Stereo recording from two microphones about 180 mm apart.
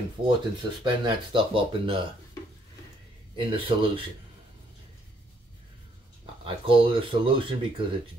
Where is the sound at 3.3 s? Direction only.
30° right (ahead or behind).